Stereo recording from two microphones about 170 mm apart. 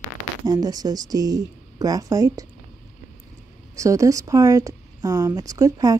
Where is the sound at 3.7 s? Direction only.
20° right (ahead or behind).